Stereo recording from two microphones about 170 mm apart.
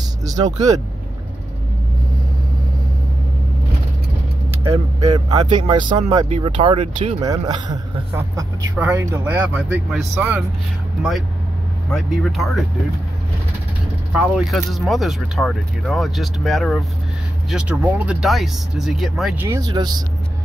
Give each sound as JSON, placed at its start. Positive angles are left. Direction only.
{"t": 0.6, "sound": "speech", "side_deg": -20}
{"t": 5.1, "sound": "speech", "side_deg": -25}
{"t": 6.2, "sound": "speech", "side_deg": -40}
{"t": 14.1, "sound": "speech", "side_deg": -5}
{"t": 19.4, "sound": "speech", "side_deg": -20}